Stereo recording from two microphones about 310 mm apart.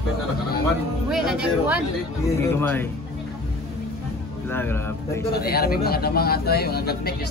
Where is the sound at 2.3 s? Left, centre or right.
Centre.